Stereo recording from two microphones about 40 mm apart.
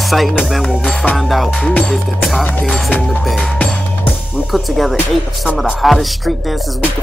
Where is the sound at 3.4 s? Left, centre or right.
Left.